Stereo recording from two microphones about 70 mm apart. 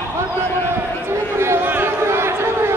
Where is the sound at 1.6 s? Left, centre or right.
Right.